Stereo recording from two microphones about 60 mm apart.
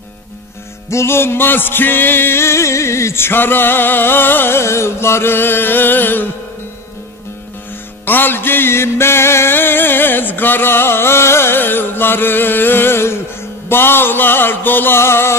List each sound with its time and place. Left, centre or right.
0.8 s music: left
8.0 s music: left